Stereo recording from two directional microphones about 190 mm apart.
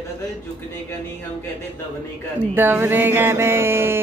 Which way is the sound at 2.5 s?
10° right (ahead or behind).